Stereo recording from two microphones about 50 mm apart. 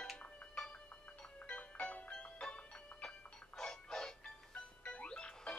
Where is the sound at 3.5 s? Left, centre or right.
Centre.